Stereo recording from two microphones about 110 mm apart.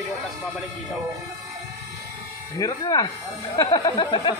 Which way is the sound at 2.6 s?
35° left (ahead or behind).